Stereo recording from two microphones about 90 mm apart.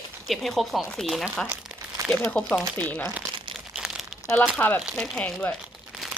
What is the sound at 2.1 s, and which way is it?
Speech, 10° left (ahead or behind).